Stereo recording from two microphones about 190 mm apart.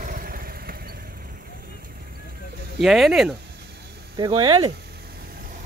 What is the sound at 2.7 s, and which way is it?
Speech, centre (ahead or behind).